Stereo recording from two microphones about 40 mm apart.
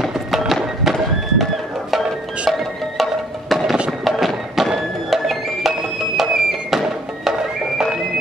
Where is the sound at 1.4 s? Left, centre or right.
Centre.